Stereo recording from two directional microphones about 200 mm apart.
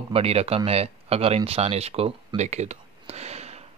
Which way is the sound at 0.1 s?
30° right (ahead or behind).